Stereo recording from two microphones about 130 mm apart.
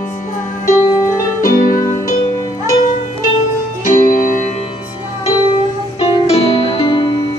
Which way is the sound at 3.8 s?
90° left.